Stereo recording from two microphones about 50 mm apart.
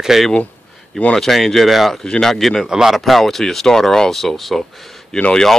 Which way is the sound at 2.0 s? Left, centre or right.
Centre.